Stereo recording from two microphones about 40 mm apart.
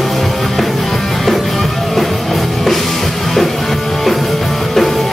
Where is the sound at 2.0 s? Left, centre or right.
Centre.